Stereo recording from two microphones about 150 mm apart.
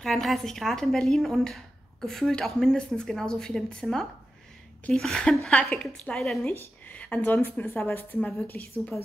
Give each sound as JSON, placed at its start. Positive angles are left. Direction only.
{"t": 0.0, "sound": "speech", "side_deg": 0}